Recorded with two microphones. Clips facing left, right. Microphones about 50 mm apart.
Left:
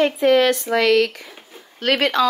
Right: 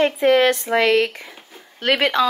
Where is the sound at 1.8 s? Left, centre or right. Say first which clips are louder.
Even; centre.